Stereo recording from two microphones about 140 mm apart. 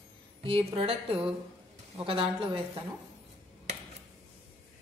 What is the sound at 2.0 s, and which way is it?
Speech, 40° right (ahead or behind).